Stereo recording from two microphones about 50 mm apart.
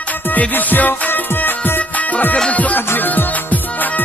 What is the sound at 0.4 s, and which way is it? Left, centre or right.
Music, left.